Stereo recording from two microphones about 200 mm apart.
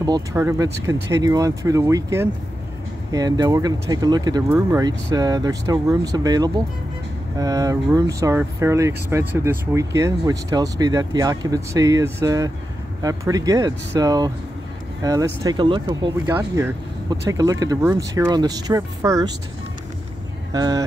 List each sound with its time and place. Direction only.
0.0 s speech: 15° right (ahead or behind)
20.5 s speech: 20° right (ahead or behind)